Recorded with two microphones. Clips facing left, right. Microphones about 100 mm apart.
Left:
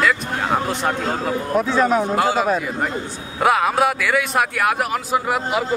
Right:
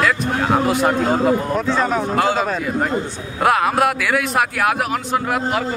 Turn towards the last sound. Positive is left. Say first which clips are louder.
# even
turn(degrees=5)  # may be behind; listen again after turning